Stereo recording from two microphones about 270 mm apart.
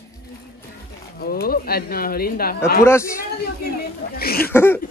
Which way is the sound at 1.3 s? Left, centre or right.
Left.